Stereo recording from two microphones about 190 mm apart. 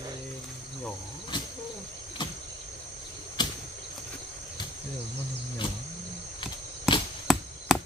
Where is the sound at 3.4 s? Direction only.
25° left (ahead or behind).